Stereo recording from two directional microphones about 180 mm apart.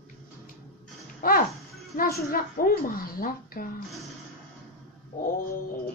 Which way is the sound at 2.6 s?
55° left (ahead or behind).